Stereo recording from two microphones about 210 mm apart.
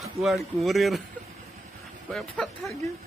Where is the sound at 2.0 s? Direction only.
Centre (ahead or behind).